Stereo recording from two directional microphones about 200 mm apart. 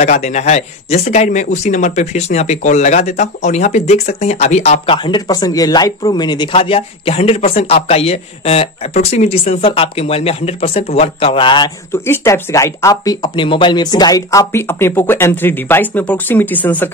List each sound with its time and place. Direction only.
0.0 s speech: 35° left (ahead or behind); by 16.9 s 10° left (ahead or behind)